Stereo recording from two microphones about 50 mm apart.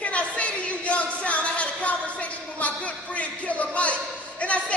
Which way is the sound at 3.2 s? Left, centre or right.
Left.